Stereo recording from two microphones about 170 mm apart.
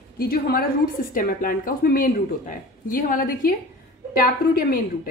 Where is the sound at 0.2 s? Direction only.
60° left (ahead or behind).